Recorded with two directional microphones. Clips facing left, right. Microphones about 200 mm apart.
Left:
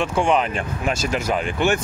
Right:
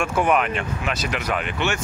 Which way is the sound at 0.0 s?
30° left (ahead or behind).